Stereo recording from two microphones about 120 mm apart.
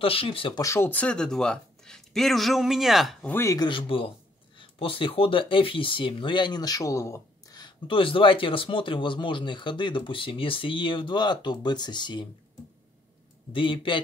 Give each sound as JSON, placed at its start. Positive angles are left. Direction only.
{"t": 0.0, "sound": "speech", "side_deg": 50}
{"t": 0.6, "sound": "speech", "side_deg": 25}
{"t": 0.8, "sound": "speech", "side_deg": 10}
{"t": 3.3, "sound": "speech", "side_deg": 20}
{"t": 3.5, "sound": "speech", "side_deg": 40}
{"t": 7.6, "sound": "speech", "side_deg": 45}
{"t": 13.5, "sound": "speech", "side_deg": 45}